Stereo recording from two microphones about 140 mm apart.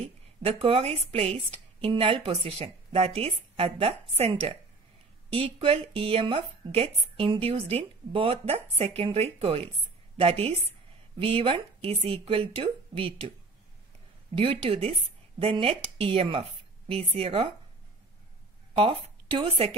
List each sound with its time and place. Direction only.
0.0 s speech: 45° right (ahead or behind)
14.3 s a woman's voice: 40° right (ahead or behind)
18.8 s speech: 40° right (ahead or behind)